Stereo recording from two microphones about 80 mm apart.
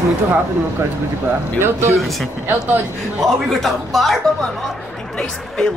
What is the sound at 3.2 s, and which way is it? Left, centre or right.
Speech, centre.